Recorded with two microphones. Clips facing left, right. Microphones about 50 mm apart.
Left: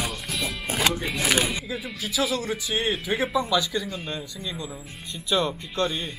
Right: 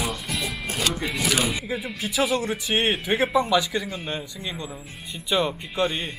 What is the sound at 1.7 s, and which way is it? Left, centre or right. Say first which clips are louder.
Speech: right 3 dB; right.